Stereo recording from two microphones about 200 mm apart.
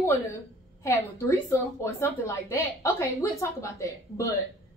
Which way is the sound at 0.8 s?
15° left (ahead or behind).